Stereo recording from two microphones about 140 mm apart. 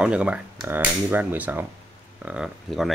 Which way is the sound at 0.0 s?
10° right (ahead or behind).